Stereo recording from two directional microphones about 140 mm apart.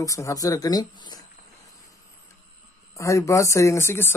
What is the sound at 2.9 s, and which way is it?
Speech, 20° left (ahead or behind).